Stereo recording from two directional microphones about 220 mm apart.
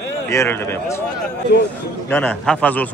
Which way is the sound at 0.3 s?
10° left (ahead or behind).